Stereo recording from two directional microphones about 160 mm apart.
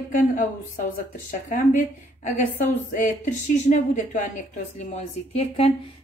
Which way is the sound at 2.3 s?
55° left (ahead or behind).